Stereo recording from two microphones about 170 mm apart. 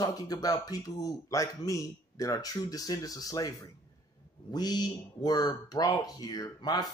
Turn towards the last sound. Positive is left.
turn(degrees=25)  # may be behind; listen again after turning